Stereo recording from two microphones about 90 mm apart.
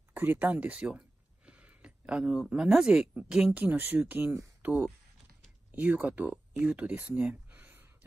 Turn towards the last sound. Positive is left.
turn(degrees=-20)  # may be behind; listen again after turning